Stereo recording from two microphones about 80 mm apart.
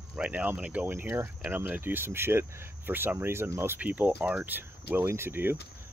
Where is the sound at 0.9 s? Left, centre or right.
Right.